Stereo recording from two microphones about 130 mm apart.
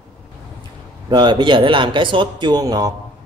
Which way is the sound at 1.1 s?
35° right (ahead or behind).